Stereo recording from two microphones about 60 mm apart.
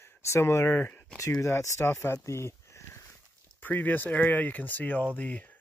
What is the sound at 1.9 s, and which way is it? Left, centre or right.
Speech, left.